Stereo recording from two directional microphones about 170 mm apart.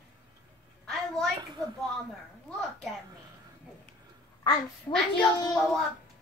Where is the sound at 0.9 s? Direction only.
Centre (ahead or behind).